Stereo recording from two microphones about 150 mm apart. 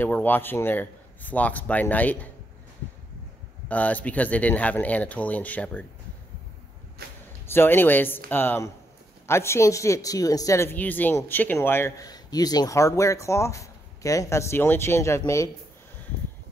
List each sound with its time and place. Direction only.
0.0 s a man's voice: 10° left (ahead or behind)
3.6 s a man's voice: 10° left (ahead or behind)
7.4 s a man's voice: 15° left (ahead or behind)